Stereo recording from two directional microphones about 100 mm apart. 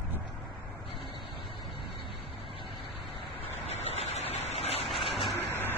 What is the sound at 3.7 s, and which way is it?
Vehicle, 90° left.